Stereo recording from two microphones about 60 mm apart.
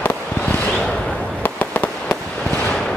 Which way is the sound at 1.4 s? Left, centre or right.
Left.